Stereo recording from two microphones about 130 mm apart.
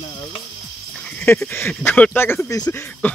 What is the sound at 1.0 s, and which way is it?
Speech, 10° left (ahead or behind).